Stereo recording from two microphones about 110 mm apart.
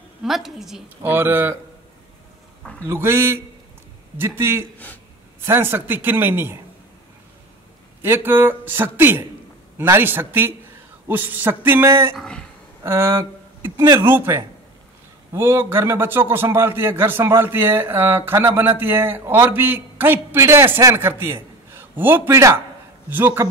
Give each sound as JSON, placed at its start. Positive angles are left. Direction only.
{"t": 0.2, "sound": "a woman's voice", "side_deg": -5}
{"t": 1.0, "sound": "a man's voice", "side_deg": -20}
{"t": 2.6, "sound": "a sound", "side_deg": 10}
{"t": 2.9, "sound": "a man's voice", "side_deg": -25}
{"t": 8.0, "sound": "a man's voice", "side_deg": -20}
{"t": 12.2, "sound": "speech", "side_deg": 5}
{"t": 12.8, "sound": "a man's voice", "side_deg": -25}